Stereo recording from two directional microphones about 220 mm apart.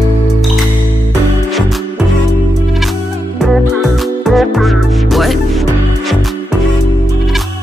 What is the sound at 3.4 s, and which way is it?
Music, centre (ahead or behind).